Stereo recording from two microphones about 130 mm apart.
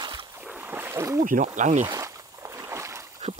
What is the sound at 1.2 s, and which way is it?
Speech, 85° right.